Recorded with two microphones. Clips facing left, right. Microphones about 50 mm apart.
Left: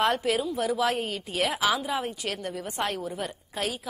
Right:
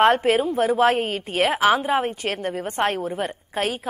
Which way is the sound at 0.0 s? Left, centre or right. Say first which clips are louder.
Right 8 dB; right.